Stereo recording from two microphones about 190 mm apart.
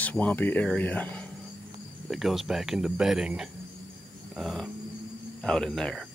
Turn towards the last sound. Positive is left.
turn(degrees=0)  # may be behind; listen again after turning